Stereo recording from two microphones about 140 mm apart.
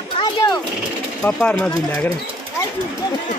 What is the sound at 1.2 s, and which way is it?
Speech, 10° left (ahead or behind).